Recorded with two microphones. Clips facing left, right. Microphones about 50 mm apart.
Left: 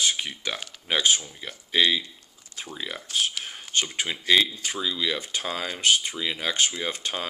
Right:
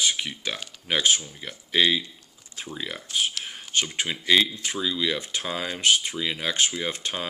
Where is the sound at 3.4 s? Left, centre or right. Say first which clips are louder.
Even; centre.